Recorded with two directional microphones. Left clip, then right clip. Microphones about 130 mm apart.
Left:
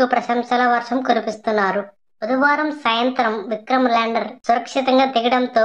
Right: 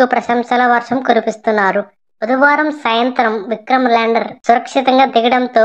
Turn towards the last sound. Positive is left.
turn(degrees=-35)  # may be behind; listen again after turning